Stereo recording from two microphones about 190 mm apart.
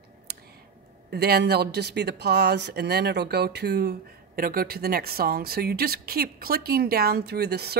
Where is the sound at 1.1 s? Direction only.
60° right (ahead or behind).